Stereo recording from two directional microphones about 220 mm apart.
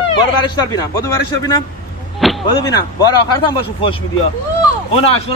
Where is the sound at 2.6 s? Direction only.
15° left (ahead or behind).